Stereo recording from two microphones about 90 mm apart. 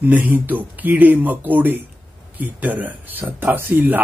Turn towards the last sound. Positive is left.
turn(degrees=-20)  # may be behind; listen again after turning